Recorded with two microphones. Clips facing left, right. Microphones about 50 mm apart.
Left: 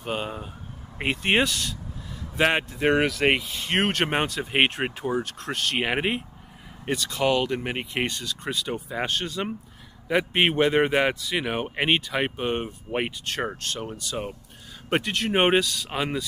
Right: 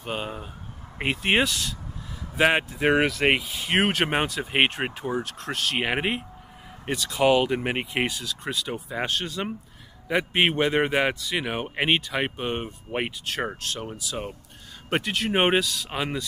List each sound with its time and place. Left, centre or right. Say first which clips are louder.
0.0 s speech: left 1 dB; centre
7.2 s speech: right 4 dB; centre